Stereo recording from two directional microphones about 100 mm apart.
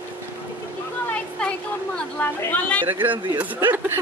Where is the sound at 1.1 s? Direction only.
10° left (ahead or behind).